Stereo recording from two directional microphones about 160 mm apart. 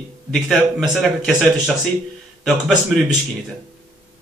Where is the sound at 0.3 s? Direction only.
Centre (ahead or behind).